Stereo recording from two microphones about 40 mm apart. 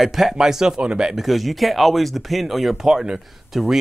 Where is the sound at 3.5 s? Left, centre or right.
Centre.